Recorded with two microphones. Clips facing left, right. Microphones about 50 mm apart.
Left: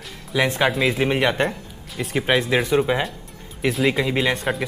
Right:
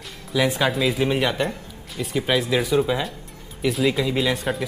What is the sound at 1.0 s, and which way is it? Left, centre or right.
A man's voice, left.